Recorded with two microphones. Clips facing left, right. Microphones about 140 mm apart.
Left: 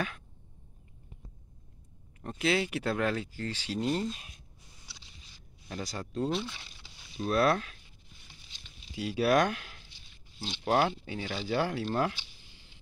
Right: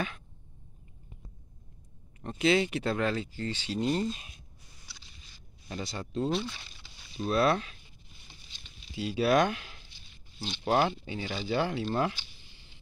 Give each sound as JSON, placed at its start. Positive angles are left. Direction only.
{"t": 2.2, "sound": "speech", "side_deg": 5}
{"t": 5.9, "sound": "speech", "side_deg": 0}
{"t": 8.9, "sound": "speech", "side_deg": 5}